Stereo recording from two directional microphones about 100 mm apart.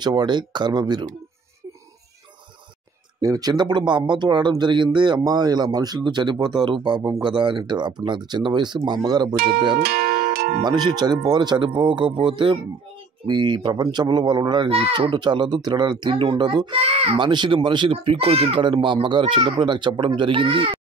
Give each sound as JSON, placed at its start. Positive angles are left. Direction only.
{"t": 0.0, "sound": "speech", "side_deg": -45}
{"t": 3.2, "sound": "speech", "side_deg": -35}
{"t": 14.7, "sound": "speech", "side_deg": -70}
{"t": 15.0, "sound": "speech", "side_deg": -50}
{"t": 17.2, "sound": "speech", "side_deg": -50}
{"t": 18.6, "sound": "speech", "side_deg": -55}